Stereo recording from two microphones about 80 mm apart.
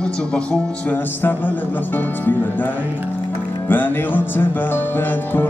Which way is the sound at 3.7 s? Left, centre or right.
Left.